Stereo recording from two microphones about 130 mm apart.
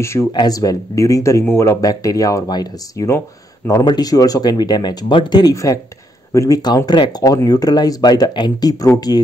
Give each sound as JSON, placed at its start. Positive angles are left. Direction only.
{"t": 0.0, "sound": "speech", "side_deg": 20}
{"t": 0.3, "sound": "speech", "side_deg": 30}